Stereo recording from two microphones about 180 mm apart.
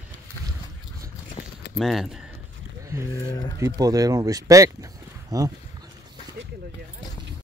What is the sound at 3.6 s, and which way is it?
Speech, 20° right (ahead or behind).